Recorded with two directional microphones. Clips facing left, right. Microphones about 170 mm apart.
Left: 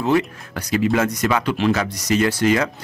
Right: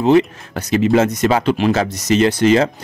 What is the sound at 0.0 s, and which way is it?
Speech, 20° right (ahead or behind).